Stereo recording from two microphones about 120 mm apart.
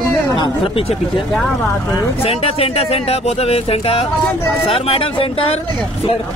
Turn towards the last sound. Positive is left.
turn(degrees=50)  # may be behind; listen again after turning